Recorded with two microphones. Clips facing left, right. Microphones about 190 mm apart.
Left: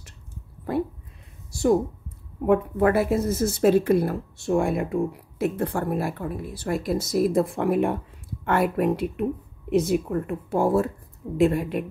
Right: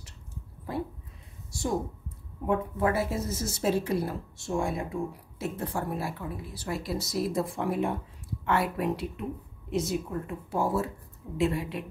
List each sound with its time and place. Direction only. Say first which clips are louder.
2.4 s a woman's voice: left 7 dB; 65° left (ahead or behind)